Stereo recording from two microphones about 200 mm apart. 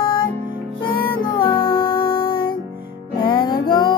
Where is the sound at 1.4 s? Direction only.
25° left (ahead or behind).